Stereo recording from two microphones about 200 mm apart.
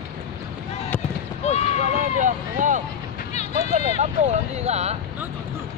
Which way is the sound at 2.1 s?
40° right (ahead or behind).